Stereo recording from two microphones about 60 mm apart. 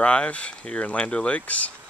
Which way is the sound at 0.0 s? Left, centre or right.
Centre.